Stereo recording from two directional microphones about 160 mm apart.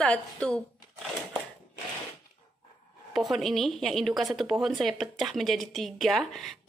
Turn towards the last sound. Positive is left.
turn(degrees=0)  # may be behind; listen again after turning